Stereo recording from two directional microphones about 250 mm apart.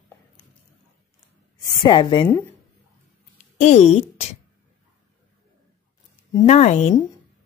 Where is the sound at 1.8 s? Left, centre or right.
Centre.